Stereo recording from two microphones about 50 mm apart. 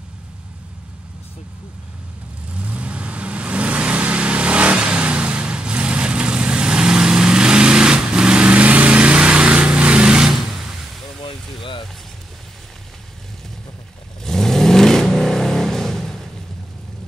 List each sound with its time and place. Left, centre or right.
2.5 s vehicle: right
10.2 s a sound: centre
14.2 s vehicle: centre